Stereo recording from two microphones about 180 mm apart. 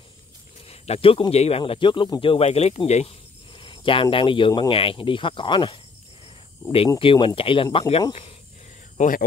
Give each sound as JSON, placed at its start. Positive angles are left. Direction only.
{"t": 0.7, "sound": "speech", "side_deg": 35}
{"t": 7.0, "sound": "speech", "side_deg": 30}
{"t": 8.9, "sound": "speech", "side_deg": 45}